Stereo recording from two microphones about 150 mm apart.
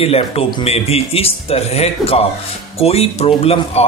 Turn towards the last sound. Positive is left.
turn(degrees=45)  # may be behind; listen again after turning